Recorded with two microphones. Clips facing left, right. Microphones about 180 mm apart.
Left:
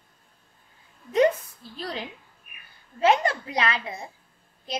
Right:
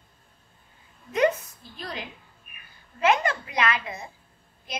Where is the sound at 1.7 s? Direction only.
30° left (ahead or behind).